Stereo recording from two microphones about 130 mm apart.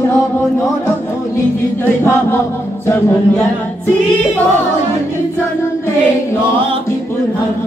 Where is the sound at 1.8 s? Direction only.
20° left (ahead or behind).